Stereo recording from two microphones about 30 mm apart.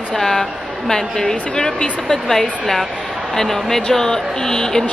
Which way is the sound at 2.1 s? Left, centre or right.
Centre.